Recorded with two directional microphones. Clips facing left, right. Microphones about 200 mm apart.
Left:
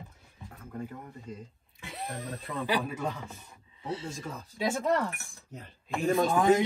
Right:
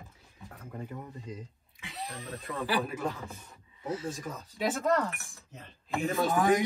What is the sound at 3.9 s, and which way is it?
Speech, 30° left (ahead or behind).